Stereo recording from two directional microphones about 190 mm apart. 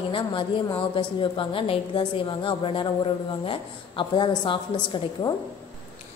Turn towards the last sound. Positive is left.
turn(degrees=25)  # may be behind; listen again after turning